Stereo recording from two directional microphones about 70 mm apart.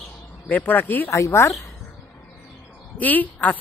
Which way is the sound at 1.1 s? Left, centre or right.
Left.